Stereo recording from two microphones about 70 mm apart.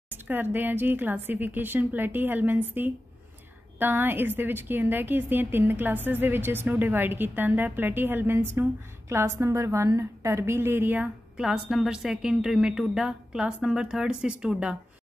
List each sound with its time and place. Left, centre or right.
0.1 s a woman's voice: right
11.3 s a woman's voice: centre